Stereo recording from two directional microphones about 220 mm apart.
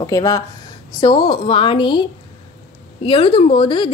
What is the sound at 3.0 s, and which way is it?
Speech, 25° left (ahead or behind).